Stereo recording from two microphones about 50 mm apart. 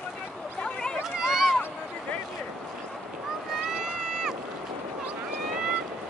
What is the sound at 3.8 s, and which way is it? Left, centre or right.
Boat, centre.